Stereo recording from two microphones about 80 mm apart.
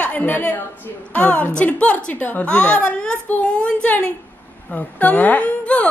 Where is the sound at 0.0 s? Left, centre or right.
Left.